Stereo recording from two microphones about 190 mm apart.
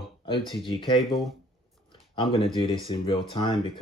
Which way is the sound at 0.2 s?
25° left (ahead or behind).